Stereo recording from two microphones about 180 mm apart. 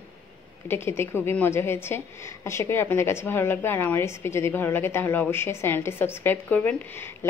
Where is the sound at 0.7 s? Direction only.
15° left (ahead or behind).